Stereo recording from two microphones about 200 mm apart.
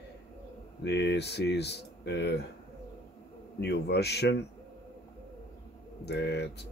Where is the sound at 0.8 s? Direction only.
60° left (ahead or behind).